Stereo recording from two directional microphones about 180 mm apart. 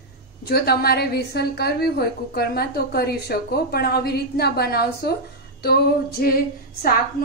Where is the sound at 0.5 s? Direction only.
60° left (ahead or behind).